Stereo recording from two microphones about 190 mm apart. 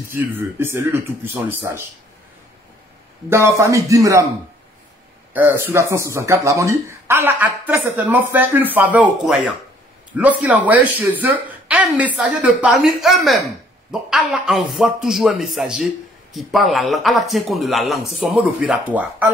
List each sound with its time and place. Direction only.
0.1 s speech: 10° right (ahead or behind)
3.3 s speech: 15° right (ahead or behind)
5.3 s speech: 10° right (ahead or behind)